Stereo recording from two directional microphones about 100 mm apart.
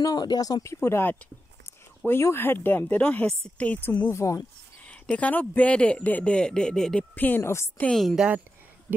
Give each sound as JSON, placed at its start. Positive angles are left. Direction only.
{"t": 0.0, "sound": "speech", "side_deg": 45}
{"t": 0.7, "sound": "a woman's voice", "side_deg": 20}
{"t": 2.0, "sound": "a sound", "side_deg": 20}
{"t": 2.2, "sound": "a woman's voice", "side_deg": 25}
{"t": 4.8, "sound": "speech", "side_deg": 15}
{"t": 7.8, "sound": "a woman's voice", "side_deg": 5}